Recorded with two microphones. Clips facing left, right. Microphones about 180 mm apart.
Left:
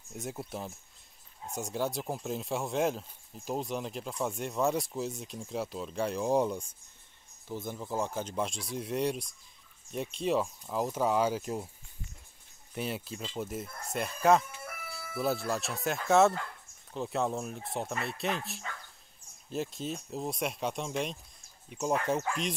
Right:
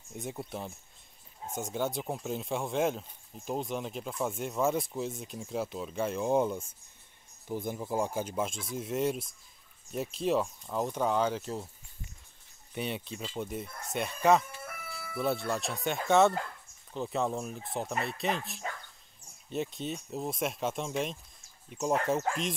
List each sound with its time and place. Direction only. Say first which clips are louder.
0.1 s speech: even; centre (ahead or behind)
7.4 s speech: right 3 dB; 15° right (ahead or behind); by 11.7 s 10° left (ahead or behind)
12.7 s speech: even; centre (ahead or behind)